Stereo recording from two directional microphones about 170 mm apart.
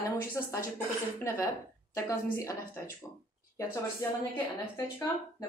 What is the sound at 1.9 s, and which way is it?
Speech, 15° left (ahead or behind).